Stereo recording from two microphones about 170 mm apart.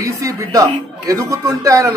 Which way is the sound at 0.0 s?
20° right (ahead or behind).